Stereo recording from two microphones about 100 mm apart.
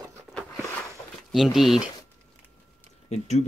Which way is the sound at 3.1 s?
90° left.